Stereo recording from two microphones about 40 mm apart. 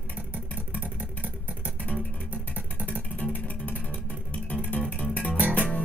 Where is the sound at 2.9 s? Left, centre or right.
Left.